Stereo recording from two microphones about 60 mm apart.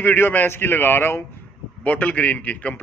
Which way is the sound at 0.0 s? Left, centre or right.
Left.